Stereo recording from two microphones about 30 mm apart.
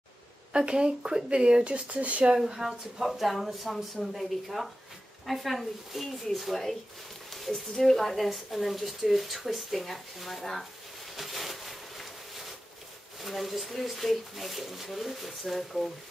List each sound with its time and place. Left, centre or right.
0.5 s speech: right
1.9 s speech: right
2.3 s speech: centre
9.4 s speech: centre
9.8 s speech: centre
11.1 s a sound: centre
13.2 s speech: centre